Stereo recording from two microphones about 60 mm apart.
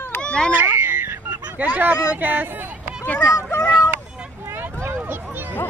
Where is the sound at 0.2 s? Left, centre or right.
Centre.